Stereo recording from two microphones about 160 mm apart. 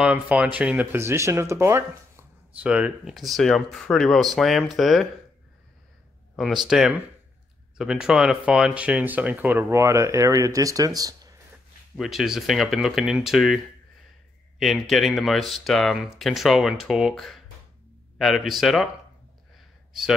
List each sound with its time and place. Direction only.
0.0 s speech: 10° right (ahead or behind)
6.3 s speech: centre (ahead or behind); by 11.3 s 25° right (ahead or behind)
12.0 s speech: centre (ahead or behind)
14.6 s speech: centre (ahead or behind)
19.9 s a man's voice: centre (ahead or behind)